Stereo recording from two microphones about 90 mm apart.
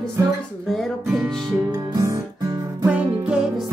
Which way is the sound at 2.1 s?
35° right (ahead or behind).